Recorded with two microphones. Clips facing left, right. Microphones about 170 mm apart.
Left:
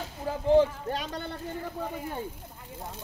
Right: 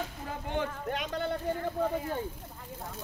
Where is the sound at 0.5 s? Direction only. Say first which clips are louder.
Left 11 dB; 35° left (ahead or behind).